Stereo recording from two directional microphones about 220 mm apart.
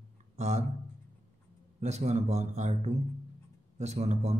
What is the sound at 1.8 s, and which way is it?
Speech, 30° right (ahead or behind).